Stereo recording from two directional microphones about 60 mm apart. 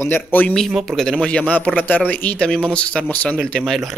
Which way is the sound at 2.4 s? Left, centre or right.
Centre.